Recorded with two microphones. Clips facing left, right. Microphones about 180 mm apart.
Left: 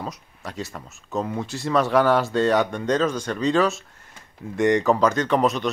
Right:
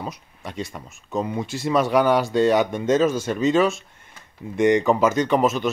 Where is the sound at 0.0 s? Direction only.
Centre (ahead or behind).